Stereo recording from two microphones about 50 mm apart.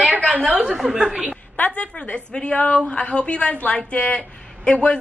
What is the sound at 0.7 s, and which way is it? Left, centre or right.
Speech, centre.